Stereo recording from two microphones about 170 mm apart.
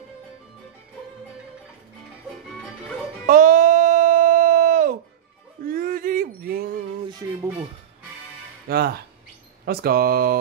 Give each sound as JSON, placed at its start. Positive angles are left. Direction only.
{"t": 3.3, "sound": "music", "side_deg": -50}
{"t": 5.7, "sound": "a sound", "side_deg": -55}
{"t": 7.1, "sound": "music", "side_deg": -20}
{"t": 8.6, "sound": "speech", "side_deg": -65}